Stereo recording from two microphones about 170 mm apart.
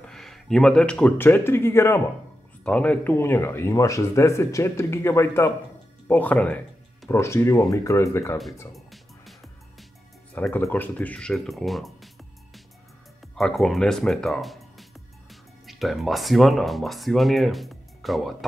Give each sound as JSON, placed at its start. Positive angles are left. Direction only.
{"t": 0.0, "sound": "speech", "side_deg": 0}
{"t": 8.7, "sound": "music", "side_deg": 0}
{"t": 10.6, "sound": "speech", "side_deg": 10}
{"t": 13.4, "sound": "speech", "side_deg": 0}